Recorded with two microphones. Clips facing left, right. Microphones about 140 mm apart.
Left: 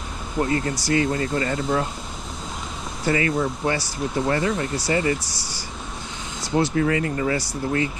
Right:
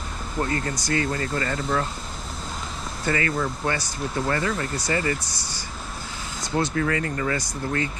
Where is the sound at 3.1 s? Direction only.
25° left (ahead or behind).